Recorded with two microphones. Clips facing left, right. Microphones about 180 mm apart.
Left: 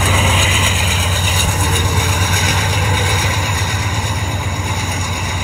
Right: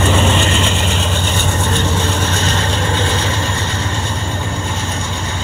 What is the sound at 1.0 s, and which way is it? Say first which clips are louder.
Vehicle: right 2 dB; 15° left (ahead or behind).